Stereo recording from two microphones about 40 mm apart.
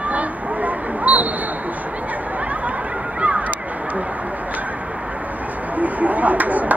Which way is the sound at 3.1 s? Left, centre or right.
Right.